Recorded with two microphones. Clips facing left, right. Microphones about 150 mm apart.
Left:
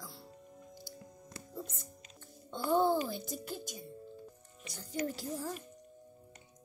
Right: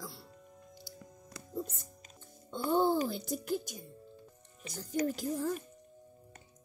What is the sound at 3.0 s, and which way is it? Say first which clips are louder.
Speech: right 3 dB; 55° right (ahead or behind).